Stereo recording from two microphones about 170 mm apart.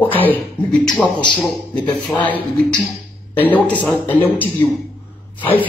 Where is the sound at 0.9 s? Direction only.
25° left (ahead or behind).